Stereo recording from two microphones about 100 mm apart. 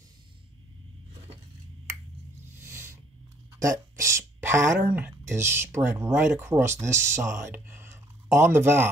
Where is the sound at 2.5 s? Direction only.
25° right (ahead or behind).